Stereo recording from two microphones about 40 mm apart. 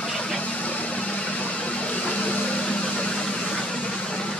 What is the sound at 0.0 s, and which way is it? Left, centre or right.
Vehicle, centre.